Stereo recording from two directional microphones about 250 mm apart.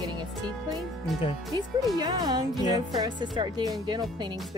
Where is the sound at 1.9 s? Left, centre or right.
Centre.